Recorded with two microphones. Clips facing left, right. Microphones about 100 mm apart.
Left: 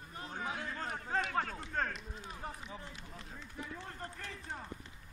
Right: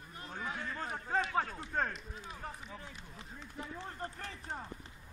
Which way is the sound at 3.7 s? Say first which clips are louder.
Right 3 dB; 30° right (ahead or behind).